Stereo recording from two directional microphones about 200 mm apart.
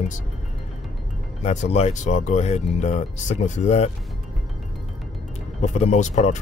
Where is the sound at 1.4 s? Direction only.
30° left (ahead or behind).